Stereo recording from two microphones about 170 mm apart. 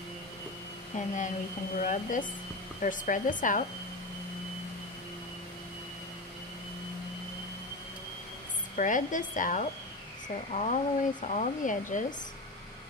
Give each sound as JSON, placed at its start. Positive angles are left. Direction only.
{"t": 0.9, "sound": "speech", "side_deg": 45}
{"t": 8.7, "sound": "speech", "side_deg": 50}